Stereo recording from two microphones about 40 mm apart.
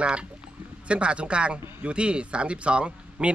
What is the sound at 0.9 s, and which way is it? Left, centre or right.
A man's voice, right.